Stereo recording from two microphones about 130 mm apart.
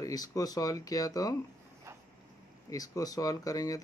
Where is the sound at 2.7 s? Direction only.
25° left (ahead or behind).